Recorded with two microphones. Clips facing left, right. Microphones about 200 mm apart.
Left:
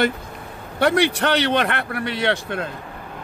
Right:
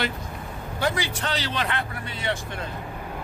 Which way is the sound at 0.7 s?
65° left (ahead or behind).